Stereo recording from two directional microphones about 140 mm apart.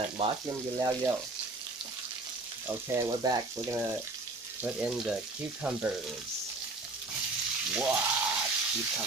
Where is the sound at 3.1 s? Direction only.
30° right (ahead or behind).